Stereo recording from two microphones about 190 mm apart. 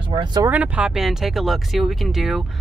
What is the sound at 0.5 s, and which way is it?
Speech, 5° right (ahead or behind).